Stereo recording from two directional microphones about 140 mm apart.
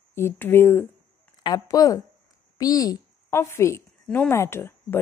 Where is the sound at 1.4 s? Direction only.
25° left (ahead or behind).